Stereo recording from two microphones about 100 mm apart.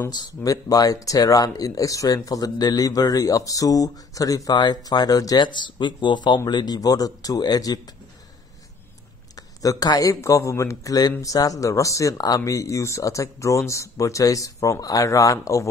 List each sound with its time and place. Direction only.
0.1 s speech: 40° left (ahead or behind)
9.6 s speech: 35° left (ahead or behind)